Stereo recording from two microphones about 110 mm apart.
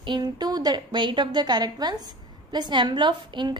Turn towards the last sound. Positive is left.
turn(degrees=-45)  # may be behind; listen again after turning